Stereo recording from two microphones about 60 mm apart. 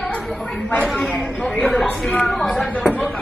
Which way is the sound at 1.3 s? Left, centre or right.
Left.